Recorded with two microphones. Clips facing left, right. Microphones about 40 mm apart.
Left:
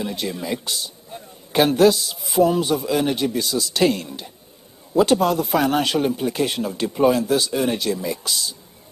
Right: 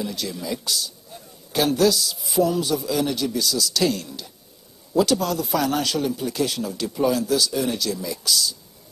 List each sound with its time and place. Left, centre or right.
0.0 s a man's voice: left